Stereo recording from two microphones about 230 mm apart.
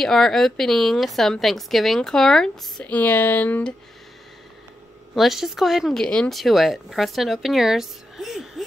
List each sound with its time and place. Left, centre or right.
0.0 s speech: centre
5.1 s speech: centre